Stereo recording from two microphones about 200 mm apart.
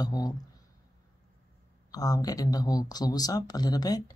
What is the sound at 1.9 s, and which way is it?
Speech, 20° left (ahead or behind).